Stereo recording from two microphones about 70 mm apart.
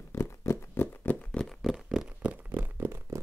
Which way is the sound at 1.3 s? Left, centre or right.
Centre.